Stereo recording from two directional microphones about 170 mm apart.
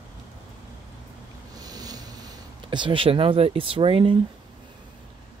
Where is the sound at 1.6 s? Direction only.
20° right (ahead or behind).